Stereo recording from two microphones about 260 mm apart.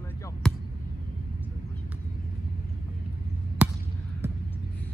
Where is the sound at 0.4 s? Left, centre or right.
Centre.